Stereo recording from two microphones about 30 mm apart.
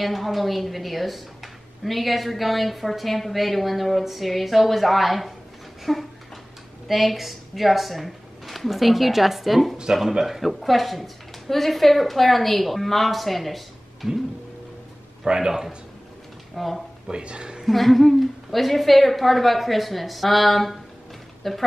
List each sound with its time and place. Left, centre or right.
0.0 s a woman's voice: centre
15.2 s speech: centre
16.5 s a woman's voice: centre
17.1 s speech: right
17.6 s a woman's voice: centre